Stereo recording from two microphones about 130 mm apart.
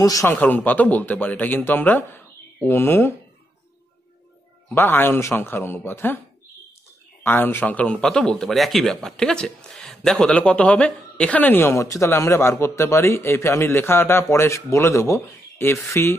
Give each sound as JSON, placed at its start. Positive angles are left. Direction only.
{"t": 0.0, "sound": "speech", "side_deg": 25}
{"t": 0.3, "sound": "speech", "side_deg": 15}
{"t": 4.6, "sound": "speech", "side_deg": 15}
{"t": 7.2, "sound": "speech", "side_deg": 15}